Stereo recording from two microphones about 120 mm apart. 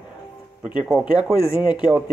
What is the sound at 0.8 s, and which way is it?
Speech, 5° right (ahead or behind).